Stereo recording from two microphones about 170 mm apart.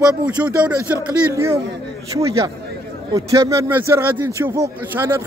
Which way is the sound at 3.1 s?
20° right (ahead or behind).